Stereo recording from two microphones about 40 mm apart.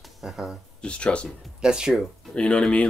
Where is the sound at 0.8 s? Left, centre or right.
Left.